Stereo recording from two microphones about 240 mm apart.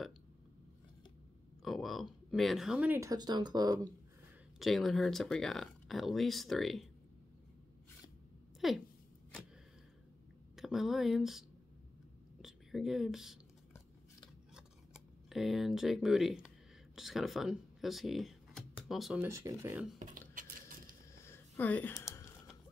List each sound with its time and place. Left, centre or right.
1.6 s speech: centre
4.6 s speech: centre
8.5 s speech: centre
10.5 s speech: centre
15.2 s speech: centre
20.0 s a sound: right
21.2 s a sound: centre